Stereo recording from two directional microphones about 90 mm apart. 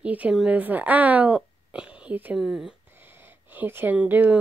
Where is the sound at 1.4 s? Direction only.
10° right (ahead or behind).